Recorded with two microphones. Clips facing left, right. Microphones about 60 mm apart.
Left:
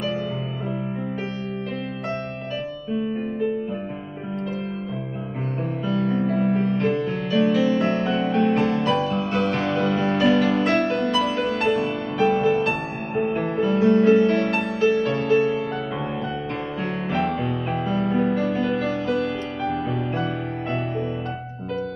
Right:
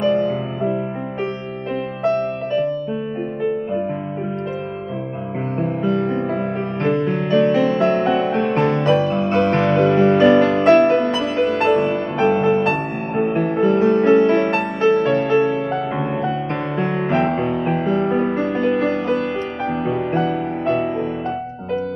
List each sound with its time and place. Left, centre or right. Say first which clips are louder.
5.9 s music: right 1 dB; right
6.9 s music: right 5 dB; right
9.3 s music: right 6 dB; right
13.2 s music: right 5 dB; centre
13.7 s music: right 2 dB; right
16.7 s music: right 7 dB; right